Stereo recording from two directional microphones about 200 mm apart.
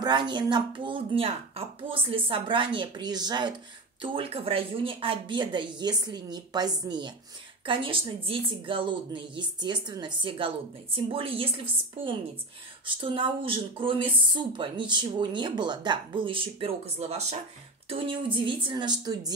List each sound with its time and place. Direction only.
0.0 s speech: 25° right (ahead or behind)